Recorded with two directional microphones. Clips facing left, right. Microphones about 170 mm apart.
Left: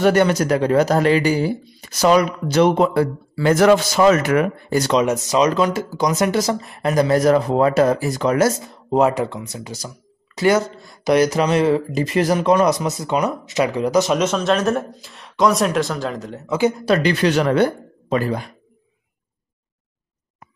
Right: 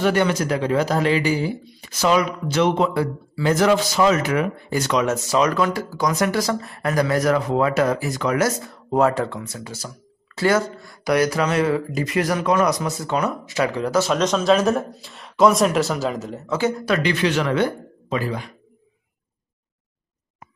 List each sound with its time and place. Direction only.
0.0 s speech: 45° left (ahead or behind)
4.9 s speech: 20° left (ahead or behind); by 16.4 s centre (ahead or behind)
16.4 s speech: 15° left (ahead or behind)
16.8 s speech: 35° left (ahead or behind)